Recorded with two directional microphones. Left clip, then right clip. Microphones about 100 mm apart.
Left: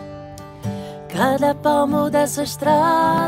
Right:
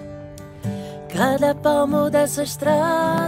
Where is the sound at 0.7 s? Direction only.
Centre (ahead or behind).